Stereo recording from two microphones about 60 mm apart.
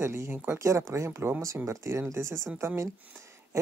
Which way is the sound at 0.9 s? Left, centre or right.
Right.